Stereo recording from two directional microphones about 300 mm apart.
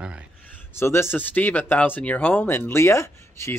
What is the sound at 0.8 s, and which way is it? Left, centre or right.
Speech, centre.